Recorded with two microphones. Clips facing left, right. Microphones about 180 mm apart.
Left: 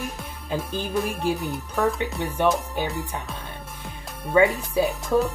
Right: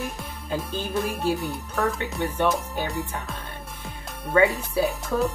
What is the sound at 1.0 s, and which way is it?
Music, 20° left (ahead or behind).